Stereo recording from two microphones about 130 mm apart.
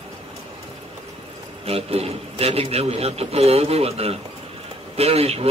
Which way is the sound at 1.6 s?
50° right (ahead or behind).